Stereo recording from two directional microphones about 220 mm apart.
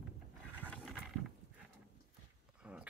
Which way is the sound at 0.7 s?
5° left (ahead or behind).